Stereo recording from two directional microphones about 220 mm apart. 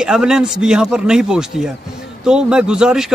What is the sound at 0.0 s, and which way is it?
A man's voice, 5° right (ahead or behind).